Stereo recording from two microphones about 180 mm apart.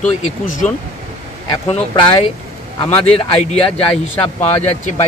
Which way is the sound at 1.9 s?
30° left (ahead or behind).